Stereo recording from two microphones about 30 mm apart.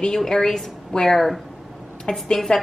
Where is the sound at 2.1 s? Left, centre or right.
Left.